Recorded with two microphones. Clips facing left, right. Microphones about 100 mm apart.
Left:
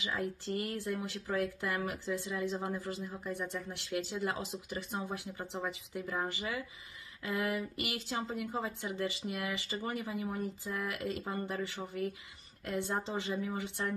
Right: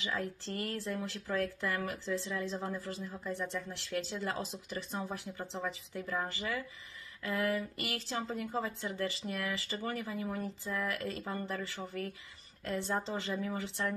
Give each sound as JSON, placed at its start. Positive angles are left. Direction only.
{"t": 0.0, "sound": "speech", "side_deg": 15}